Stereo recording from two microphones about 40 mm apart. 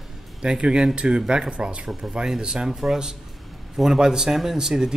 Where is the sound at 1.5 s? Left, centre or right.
Right.